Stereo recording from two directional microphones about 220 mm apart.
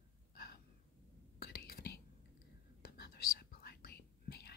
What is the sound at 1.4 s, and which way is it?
Whispering, 45° left (ahead or behind).